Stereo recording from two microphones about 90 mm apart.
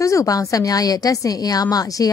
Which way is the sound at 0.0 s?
35° left (ahead or behind).